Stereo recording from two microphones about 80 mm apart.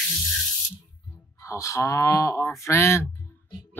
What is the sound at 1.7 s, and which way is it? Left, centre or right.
Speech, left.